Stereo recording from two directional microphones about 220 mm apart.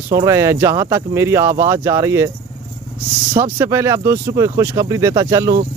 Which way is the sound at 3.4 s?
10° right (ahead or behind).